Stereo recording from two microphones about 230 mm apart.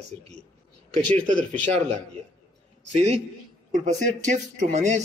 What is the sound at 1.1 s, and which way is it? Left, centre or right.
Speech, right.